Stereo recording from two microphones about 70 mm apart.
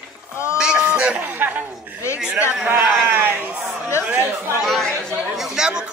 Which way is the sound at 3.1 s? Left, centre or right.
Right.